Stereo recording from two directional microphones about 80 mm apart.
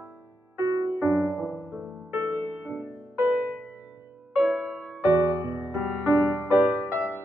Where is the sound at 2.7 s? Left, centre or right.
Right.